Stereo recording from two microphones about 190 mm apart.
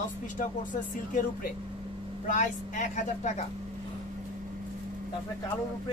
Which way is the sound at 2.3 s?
40° left (ahead or behind).